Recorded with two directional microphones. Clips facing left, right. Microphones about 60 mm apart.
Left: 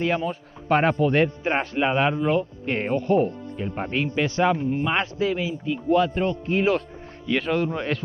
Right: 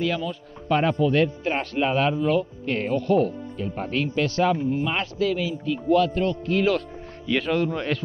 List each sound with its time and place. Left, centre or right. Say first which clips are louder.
0.0 s speech: left 2 dB; left
1.1 s a man's voice: left 1 dB; left